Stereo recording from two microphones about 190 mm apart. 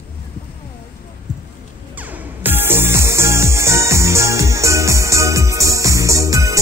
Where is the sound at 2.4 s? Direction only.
10° right (ahead or behind).